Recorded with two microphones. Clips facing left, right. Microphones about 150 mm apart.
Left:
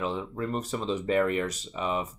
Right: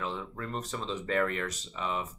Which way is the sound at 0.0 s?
15° left (ahead or behind).